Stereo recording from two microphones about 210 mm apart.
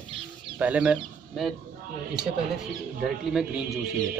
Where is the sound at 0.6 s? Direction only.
5° right (ahead or behind).